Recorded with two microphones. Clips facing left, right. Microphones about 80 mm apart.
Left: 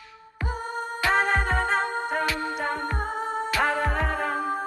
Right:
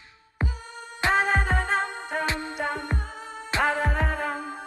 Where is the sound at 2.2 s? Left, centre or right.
Right.